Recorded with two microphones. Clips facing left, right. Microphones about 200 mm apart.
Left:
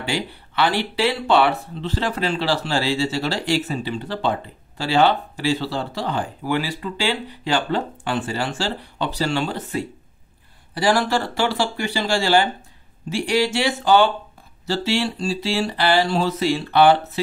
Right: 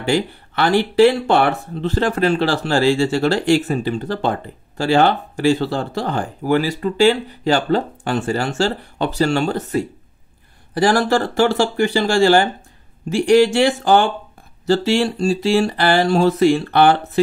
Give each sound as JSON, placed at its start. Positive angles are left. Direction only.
{"t": 0.0, "sound": "speech", "side_deg": -50}